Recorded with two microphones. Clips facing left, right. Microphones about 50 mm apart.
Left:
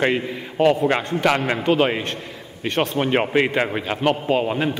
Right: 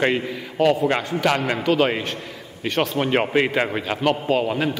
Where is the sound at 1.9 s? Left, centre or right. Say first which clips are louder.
Even; centre.